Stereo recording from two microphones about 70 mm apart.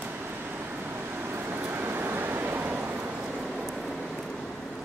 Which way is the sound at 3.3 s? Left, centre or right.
Centre.